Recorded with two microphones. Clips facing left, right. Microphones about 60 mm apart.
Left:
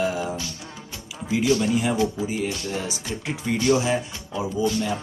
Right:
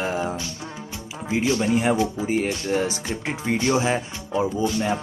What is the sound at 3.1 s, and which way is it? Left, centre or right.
Speech, right.